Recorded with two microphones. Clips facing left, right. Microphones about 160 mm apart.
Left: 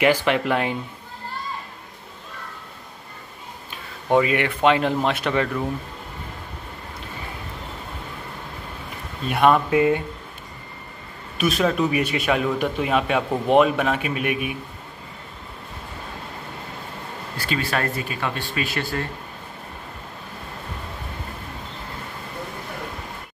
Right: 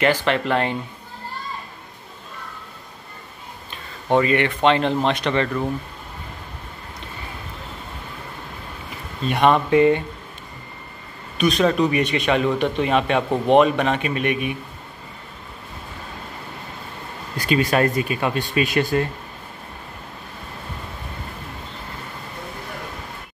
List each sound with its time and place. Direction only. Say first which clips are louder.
0.0 s speech: even; 10° left (ahead or behind)
4.1 s speech: right 1 dB; 5° left (ahead or behind)
9.3 s a man's voice: right 1 dB; 5° left (ahead or behind)
11.3 s a man's voice: right 3 dB; 5° left (ahead or behind)
17.4 s speech: right 7 dB; 15° right (ahead or behind)